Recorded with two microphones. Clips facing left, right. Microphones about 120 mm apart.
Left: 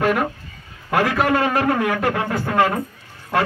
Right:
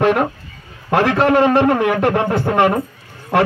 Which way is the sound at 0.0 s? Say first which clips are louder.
Right 4 dB; 25° right (ahead or behind).